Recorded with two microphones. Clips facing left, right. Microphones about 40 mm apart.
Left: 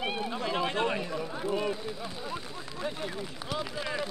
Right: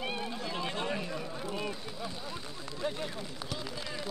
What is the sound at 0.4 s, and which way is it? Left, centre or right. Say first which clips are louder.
Run: left 6 dB; left.